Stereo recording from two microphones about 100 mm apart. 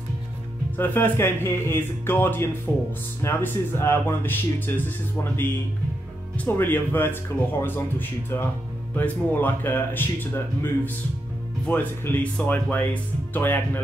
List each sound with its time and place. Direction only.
0.7 s speech: 20° left (ahead or behind)